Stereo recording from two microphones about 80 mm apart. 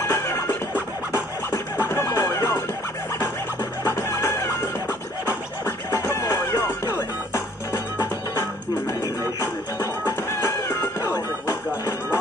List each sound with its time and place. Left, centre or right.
0.1 s music: left
1.9 s music: left
3.8 s music: left
5.9 s music: left
10.4 s music: left
11.1 s music: left